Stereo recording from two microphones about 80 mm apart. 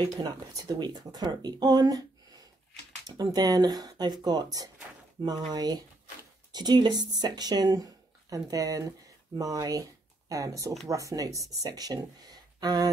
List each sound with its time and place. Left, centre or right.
0.0 s speech: right